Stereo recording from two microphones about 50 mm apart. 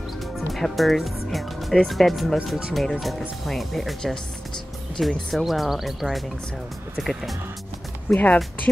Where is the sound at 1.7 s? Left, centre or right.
Centre.